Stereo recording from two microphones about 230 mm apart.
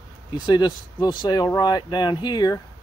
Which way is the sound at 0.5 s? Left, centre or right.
Centre.